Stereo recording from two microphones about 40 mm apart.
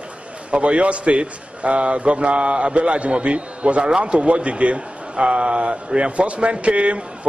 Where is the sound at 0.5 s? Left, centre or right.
Right.